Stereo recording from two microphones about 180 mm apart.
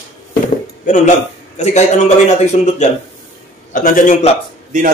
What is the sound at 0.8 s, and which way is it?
Speech, 45° left (ahead or behind).